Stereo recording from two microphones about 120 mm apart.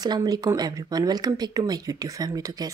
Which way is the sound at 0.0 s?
35° right (ahead or behind).